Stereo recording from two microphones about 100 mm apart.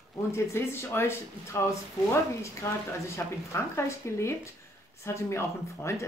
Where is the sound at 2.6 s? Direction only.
30° left (ahead or behind).